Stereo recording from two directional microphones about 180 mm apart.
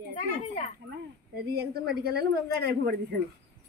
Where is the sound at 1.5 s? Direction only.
60° right (ahead or behind).